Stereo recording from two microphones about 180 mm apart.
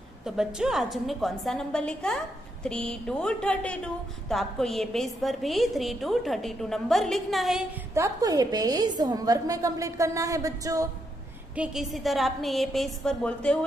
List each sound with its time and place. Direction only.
0.2 s a woman's voice: 5° right (ahead or behind)
7.9 s a woman's voice: 20° right (ahead or behind)
11.5 s a woman's voice: 5° right (ahead or behind)